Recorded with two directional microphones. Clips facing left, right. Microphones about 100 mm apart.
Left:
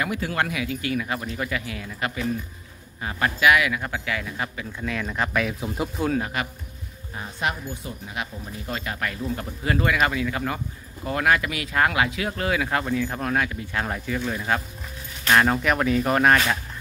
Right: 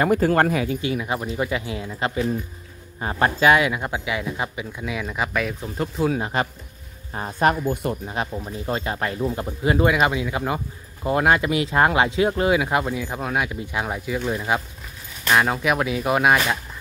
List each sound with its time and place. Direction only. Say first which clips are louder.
0.0 s speech: right 8 dB; 45° right (ahead or behind)
0.7 s speech: right 2 dB; 20° right (ahead or behind); by 6.0 s 5° left (ahead or behind)
6.4 s speech: right 5 dB; 30° right (ahead or behind)
7.2 s speech: right 8 dB; 45° right (ahead or behind)
7.7 s speech: right 10 dB; 65° right (ahead or behind)
8.5 s speech: right 5 dB; 25° right (ahead or behind)
15.2 s speech: even; 5° right (ahead or behind)